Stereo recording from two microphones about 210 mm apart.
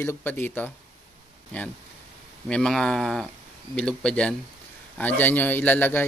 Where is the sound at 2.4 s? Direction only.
5° left (ahead or behind).